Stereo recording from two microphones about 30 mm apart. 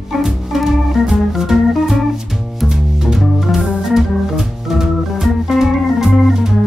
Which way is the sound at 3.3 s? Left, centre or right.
Centre.